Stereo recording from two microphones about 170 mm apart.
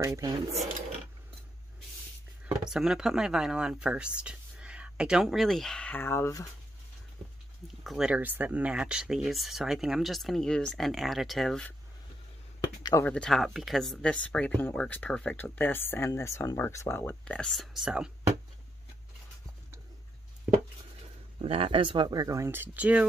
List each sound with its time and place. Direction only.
0.0 s speech: 20° right (ahead or behind)
2.4 s speech: 5° right (ahead or behind); by 6.5 s 20° left (ahead or behind)
7.8 s speech: centre (ahead or behind)
12.5 s a sound: 20° left (ahead or behind)
13.0 s speech: 5° left (ahead or behind)
21.4 s speech: 35° right (ahead or behind); by 23.0 s 10° right (ahead or behind)